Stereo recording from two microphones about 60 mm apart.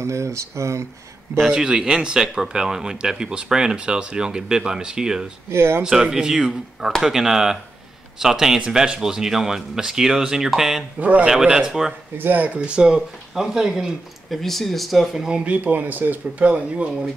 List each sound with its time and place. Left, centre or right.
0.0 s speech: right
1.5 s speech: centre
5.5 s speech: right
5.9 s speech: centre
11.0 s speech: right
11.2 s speech: centre
12.2 s speech: right; by 15.2 s centre
15.2 s speech: centre